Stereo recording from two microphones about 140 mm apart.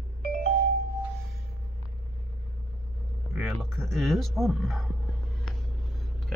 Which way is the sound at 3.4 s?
Centre (ahead or behind).